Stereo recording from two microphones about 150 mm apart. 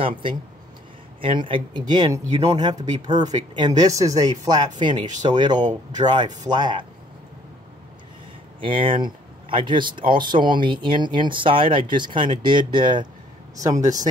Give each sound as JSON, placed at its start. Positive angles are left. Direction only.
{"t": 0.0, "sound": "speech", "side_deg": -35}
{"t": 8.5, "sound": "speech", "side_deg": -35}